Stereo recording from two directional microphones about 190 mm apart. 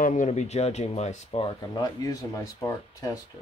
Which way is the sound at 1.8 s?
20° left (ahead or behind).